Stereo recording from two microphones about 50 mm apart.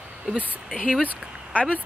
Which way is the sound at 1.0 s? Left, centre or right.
Left.